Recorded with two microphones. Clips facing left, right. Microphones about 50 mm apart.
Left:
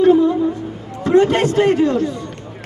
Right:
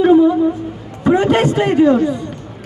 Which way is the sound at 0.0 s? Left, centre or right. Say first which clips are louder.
Right 2 dB; centre.